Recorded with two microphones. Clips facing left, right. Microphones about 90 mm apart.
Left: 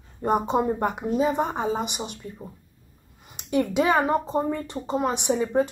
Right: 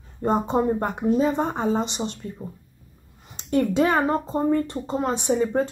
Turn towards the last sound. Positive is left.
turn(degrees=15)  # may be behind; listen again after turning